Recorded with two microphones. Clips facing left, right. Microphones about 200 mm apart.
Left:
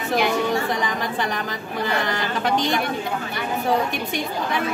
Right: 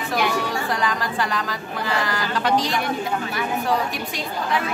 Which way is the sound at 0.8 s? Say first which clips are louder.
Even; 20° left (ahead or behind).